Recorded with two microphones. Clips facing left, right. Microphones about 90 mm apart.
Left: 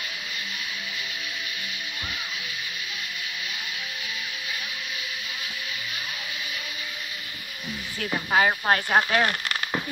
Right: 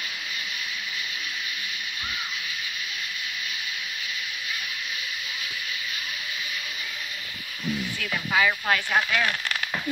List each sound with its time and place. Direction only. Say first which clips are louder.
8.0 s speech: left 3 dB; 35° left (ahead or behind)